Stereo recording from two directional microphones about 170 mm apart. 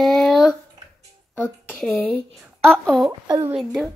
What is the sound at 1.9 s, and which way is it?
A child's voice, centre (ahead or behind).